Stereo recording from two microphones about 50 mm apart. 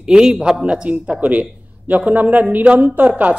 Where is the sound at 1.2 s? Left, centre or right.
Right.